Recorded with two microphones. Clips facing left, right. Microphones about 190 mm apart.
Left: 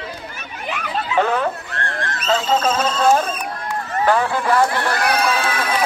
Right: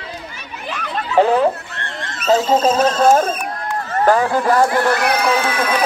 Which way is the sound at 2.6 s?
35° right (ahead or behind).